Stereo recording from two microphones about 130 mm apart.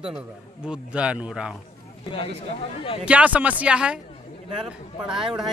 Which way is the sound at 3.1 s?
10° right (ahead or behind).